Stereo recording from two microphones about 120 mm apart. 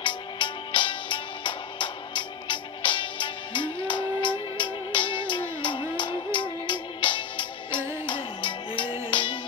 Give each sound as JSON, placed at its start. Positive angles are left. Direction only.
{"t": 0.0, "sound": "music", "side_deg": 40}